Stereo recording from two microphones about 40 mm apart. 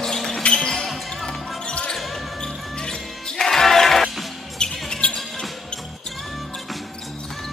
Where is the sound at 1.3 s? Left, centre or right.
Left; by 4.2 s centre.